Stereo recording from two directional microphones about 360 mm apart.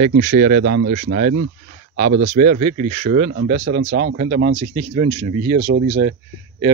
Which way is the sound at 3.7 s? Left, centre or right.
Right.